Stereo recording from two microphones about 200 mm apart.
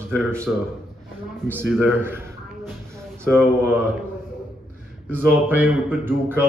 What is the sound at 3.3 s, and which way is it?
Speech, 10° right (ahead or behind).